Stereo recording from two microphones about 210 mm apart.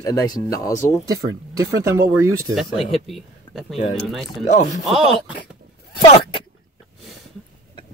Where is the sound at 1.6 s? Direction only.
15° right (ahead or behind).